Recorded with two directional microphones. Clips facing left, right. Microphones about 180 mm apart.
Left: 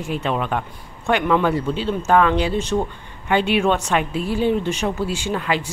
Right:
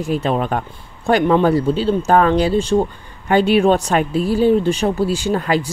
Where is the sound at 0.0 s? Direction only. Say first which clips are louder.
Right 5 dB; 40° right (ahead or behind).